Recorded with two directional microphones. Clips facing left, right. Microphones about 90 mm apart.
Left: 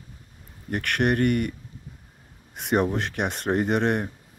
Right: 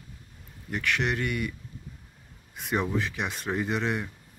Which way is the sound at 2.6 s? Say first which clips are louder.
Left 5 dB; 60° left (ahead or behind).